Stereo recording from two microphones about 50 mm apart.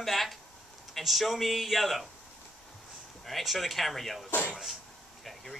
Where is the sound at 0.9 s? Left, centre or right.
Centre.